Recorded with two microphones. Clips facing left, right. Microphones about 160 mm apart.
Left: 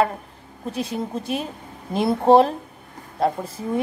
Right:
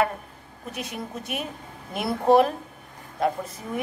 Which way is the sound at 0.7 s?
30° left (ahead or behind).